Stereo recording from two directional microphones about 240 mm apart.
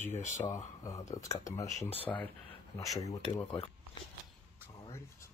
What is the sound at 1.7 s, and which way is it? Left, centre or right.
Speech, left.